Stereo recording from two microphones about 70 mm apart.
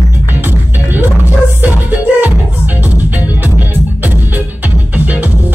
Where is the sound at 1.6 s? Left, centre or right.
Right.